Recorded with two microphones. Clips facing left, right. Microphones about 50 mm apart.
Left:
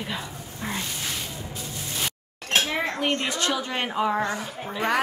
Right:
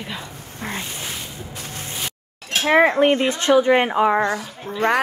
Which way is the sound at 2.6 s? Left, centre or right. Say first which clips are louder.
Right 12 dB; right.